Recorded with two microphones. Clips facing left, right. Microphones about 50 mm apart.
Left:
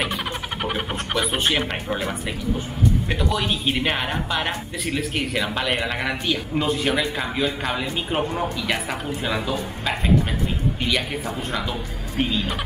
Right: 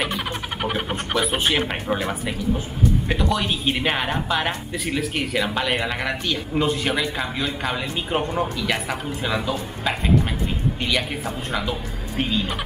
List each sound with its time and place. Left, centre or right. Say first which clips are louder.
0.0 s vehicle: even; centre
3.1 s a woman's voice: right 1 dB; centre